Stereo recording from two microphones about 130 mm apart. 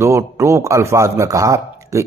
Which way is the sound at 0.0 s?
25° right (ahead or behind).